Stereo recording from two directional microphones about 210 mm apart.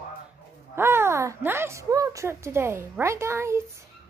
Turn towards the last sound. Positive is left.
turn(degrees=-10)  # may be behind; listen again after turning